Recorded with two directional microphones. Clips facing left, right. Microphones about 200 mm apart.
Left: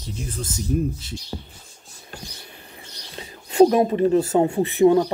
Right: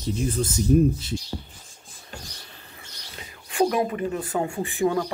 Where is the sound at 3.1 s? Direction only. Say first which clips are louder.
Left 9 dB; 25° left (ahead or behind).